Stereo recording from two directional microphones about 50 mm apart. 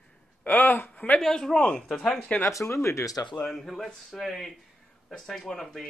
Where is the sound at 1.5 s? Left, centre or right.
Left.